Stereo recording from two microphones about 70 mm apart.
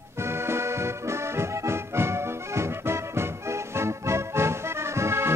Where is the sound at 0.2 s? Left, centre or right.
Right.